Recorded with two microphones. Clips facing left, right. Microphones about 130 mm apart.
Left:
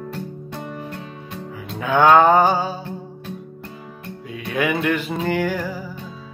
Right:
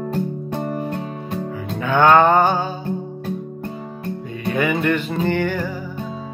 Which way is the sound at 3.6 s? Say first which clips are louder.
Right 7 dB; 35° right (ahead or behind).